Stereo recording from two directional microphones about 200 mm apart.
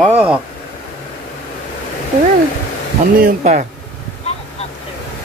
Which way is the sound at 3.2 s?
40° right (ahead or behind).